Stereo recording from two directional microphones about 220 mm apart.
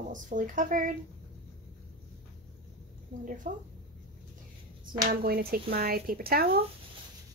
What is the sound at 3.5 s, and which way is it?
Speech, 40° right (ahead or behind).